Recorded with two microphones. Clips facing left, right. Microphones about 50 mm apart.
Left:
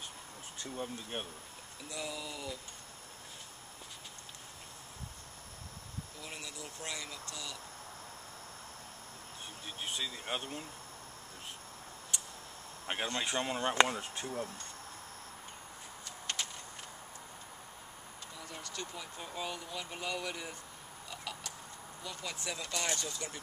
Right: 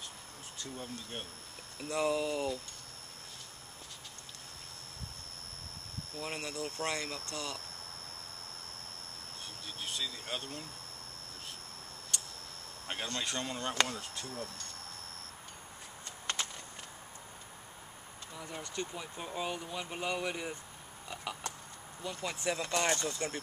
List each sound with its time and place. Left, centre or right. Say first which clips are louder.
0.7 s speech: left 4 dB; centre
1.9 s speech: right 10 dB; right
6.1 s speech: right 9 dB; right
9.4 s a sound: left 1 dB; centre
12.8 s speech: left 2 dB; centre
18.4 s speech: right 4 dB; right
21.1 s a sound: right 3 dB; centre
22.0 s speech: right 6 dB; right